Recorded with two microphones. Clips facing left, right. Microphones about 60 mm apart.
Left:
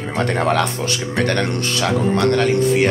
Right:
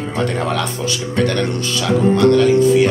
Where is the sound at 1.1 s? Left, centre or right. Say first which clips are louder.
Right 1 dB; left.